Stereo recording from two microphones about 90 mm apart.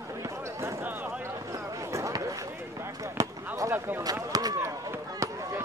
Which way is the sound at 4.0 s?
45° right (ahead or behind).